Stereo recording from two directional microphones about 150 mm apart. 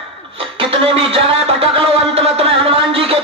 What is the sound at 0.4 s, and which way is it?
Music, 40° right (ahead or behind).